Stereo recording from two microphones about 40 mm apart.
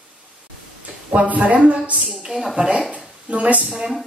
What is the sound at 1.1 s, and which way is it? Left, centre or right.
Speech, right.